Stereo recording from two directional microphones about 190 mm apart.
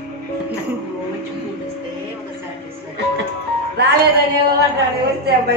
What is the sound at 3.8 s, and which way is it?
Music, 60° right (ahead or behind).